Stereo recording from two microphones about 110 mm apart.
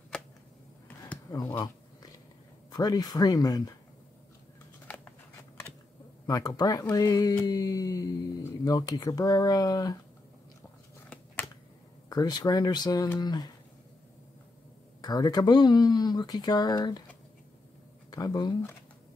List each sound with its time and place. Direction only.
0.1 s a sound: 10° left (ahead or behind)
2.7 s speech: 35° left (ahead or behind)
4.8 s a sound: 15° left (ahead or behind)
6.2 s speech: 35° left (ahead or behind)
12.1 s speech: 40° left (ahead or behind)
15.0 s speech: 35° left (ahead or behind)
18.1 s speech: 35° left (ahead or behind)